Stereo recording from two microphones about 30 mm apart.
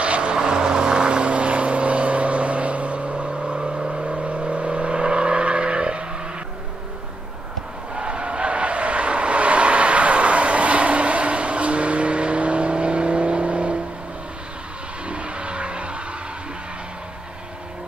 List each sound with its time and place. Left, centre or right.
0.0 s vehicle: right
0.4 s vehicle: right
3.5 s vehicle: right
4.0 s vehicle: right
7.9 s vehicle: right
15.0 s vehicle: right